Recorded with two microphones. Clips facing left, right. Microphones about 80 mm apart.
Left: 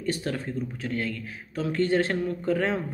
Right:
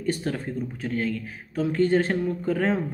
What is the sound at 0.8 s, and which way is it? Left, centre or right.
Speech, right.